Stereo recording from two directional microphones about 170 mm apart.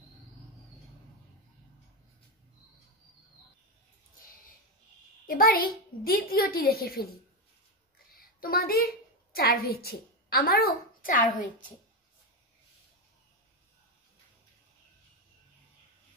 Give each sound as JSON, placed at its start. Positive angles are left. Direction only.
{"t": 5.2, "sound": "a child's voice", "side_deg": 60}
{"t": 8.2, "sound": "a woman's voice", "side_deg": 60}